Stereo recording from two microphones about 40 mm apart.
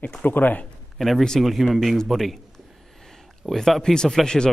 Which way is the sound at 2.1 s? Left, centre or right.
Centre.